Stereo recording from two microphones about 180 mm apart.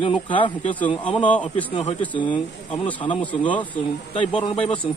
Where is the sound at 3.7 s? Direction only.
25° left (ahead or behind).